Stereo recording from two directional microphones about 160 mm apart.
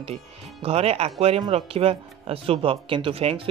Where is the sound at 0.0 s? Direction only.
40° right (ahead or behind).